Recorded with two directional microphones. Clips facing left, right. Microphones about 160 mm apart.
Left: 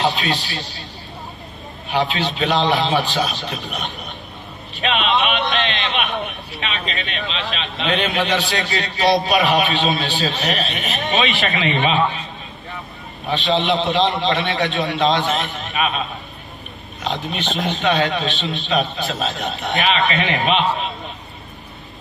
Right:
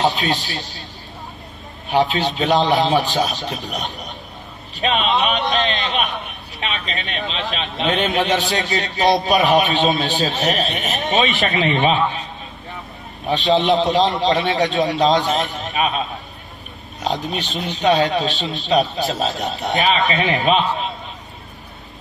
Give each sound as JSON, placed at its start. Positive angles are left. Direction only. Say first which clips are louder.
{"t": 0.0, "sound": "a man's voice", "louder": "right 1 dB", "side_deg": -45}
{"t": 1.9, "sound": "a man's voice", "louder": "right 3 dB", "side_deg": -45}
{"t": 4.9, "sound": "a man's voice", "louder": "even", "side_deg": -40}
{"t": 7.2, "sound": "a man's voice", "louder": "right 4 dB", "side_deg": -45}
{"t": 13.3, "sound": "a man's voice", "louder": "right 3 dB", "side_deg": -45}
{"t": 17.0, "sound": "speech", "louder": "right 2 dB", "side_deg": -40}
{"t": 17.5, "sound": "speech", "louder": "left 4 dB", "side_deg": 90}
{"t": 17.8, "sound": "a man's voice", "louder": "right 4 dB", "side_deg": -40}